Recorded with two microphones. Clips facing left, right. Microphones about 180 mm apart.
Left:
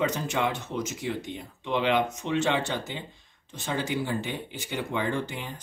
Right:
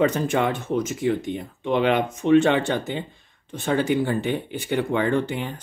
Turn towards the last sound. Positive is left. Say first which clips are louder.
# right 7 dB
turn(degrees=-60)  # may be behind; listen again after turning